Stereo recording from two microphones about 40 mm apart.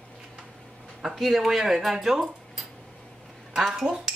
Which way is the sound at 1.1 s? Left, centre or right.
Centre.